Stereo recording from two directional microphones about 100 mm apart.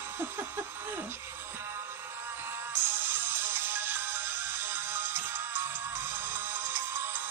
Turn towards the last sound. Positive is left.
turn(degrees=-25)  # may be behind; listen again after turning